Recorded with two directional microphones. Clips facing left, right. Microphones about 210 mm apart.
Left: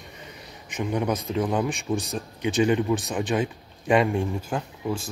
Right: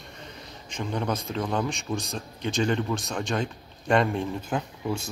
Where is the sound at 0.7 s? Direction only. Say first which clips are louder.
Left 3 dB; 10° left (ahead or behind).